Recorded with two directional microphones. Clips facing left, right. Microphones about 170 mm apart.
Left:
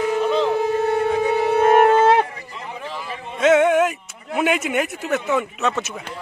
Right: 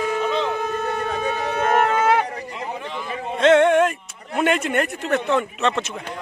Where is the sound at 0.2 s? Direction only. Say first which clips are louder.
Left 4 dB; 5° left (ahead or behind).